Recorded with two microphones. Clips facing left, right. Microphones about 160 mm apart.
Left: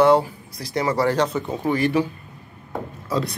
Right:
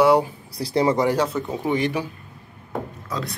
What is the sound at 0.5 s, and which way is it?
Speech, 30° right (ahead or behind).